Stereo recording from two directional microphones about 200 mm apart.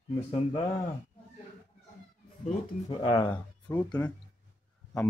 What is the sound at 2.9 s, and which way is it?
Speech, 20° left (ahead or behind).